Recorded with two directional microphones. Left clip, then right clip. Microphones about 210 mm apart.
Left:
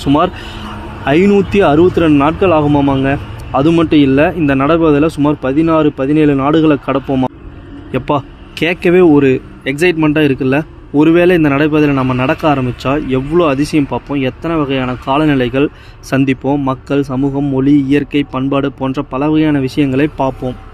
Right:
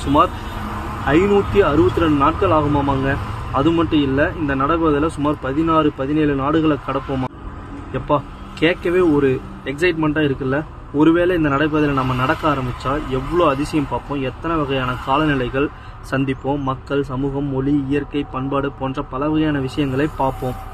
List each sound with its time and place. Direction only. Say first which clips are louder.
0.0 s speech: left 3 dB; 35° left (ahead or behind)